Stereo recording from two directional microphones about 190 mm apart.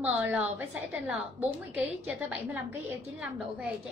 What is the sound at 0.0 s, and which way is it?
A woman's voice, 10° right (ahead or behind).